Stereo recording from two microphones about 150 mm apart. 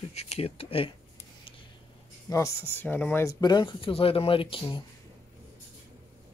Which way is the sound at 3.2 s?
30° left (ahead or behind).